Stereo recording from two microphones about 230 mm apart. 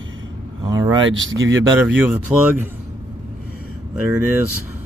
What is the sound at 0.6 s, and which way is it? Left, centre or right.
Speech, centre.